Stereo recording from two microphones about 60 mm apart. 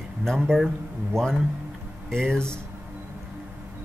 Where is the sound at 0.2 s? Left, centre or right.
Centre.